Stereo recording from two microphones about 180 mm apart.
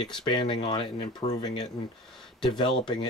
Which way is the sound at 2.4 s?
25° left (ahead or behind).